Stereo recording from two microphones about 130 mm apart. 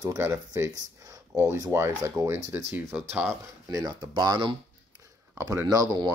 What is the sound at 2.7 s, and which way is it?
Speech, 5° right (ahead or behind).